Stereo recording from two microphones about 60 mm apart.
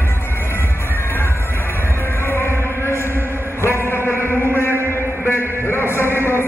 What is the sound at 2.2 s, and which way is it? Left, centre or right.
Chant, left.